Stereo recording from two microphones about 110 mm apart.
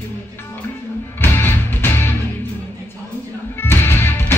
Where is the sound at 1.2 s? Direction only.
20° left (ahead or behind).